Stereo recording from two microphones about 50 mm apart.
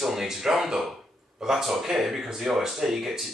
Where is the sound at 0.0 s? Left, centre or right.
Centre.